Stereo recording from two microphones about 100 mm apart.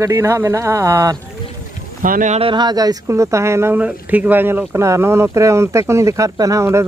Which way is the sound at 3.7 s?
15° right (ahead or behind).